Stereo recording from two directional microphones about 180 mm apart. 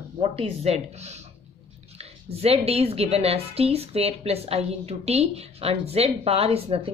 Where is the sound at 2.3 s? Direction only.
35° right (ahead or behind).